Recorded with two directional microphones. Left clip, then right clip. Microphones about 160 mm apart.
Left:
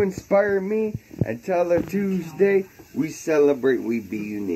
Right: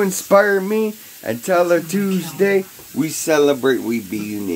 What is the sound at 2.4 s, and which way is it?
Speech, 5° right (ahead or behind).